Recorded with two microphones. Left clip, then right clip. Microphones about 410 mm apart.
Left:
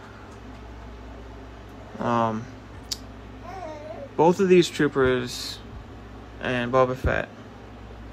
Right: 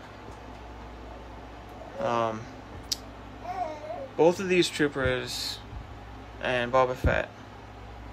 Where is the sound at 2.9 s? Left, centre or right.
Centre.